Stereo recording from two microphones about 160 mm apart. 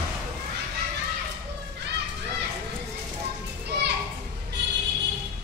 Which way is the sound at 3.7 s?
90° right.